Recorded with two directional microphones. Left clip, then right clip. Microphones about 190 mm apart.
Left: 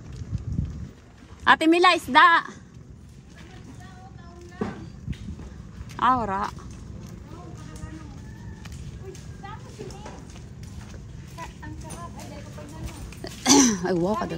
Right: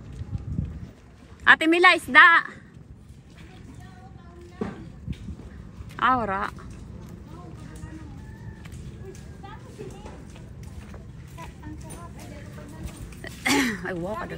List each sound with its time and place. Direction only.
1.4 s a woman's voice: 15° left (ahead or behind)
5.9 s a woman's voice: 10° left (ahead or behind)
13.2 s throat clearing: 20° left (ahead or behind)